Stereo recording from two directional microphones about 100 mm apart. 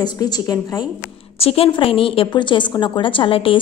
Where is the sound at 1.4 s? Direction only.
75° left (ahead or behind).